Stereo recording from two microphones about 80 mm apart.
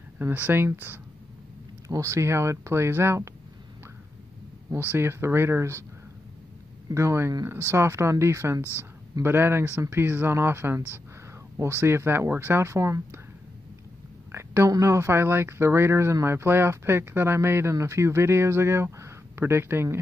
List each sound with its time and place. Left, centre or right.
0.2 s speech: right
1.9 s speech: right
4.6 s speech: right
6.9 s speech: right
11.8 s speech: right
14.3 s a sound: right
14.7 s speech: right